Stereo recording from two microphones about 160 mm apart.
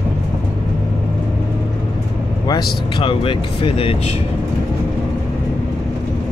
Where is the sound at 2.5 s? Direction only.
25° left (ahead or behind).